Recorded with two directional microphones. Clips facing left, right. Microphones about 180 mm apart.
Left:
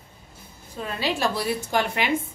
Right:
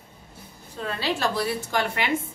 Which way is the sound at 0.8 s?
10° left (ahead or behind).